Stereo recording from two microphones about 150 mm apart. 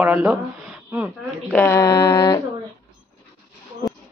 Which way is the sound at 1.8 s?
30° left (ahead or behind).